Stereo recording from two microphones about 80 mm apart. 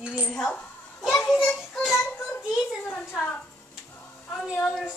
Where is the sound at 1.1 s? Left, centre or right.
Centre.